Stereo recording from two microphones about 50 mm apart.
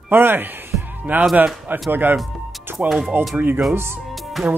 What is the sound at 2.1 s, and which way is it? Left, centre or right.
Speech, centre.